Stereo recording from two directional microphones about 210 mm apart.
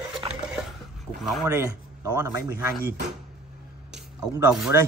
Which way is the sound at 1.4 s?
10° right (ahead or behind).